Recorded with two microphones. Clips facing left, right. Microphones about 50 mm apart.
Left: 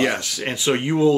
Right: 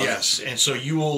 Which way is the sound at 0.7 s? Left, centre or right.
Left.